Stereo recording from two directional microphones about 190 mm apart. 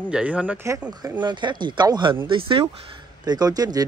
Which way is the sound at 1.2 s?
25° right (ahead or behind).